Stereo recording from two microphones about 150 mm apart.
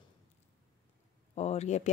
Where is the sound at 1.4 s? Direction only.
45° left (ahead or behind).